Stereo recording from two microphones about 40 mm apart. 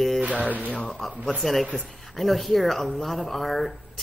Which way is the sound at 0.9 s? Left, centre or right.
Centre.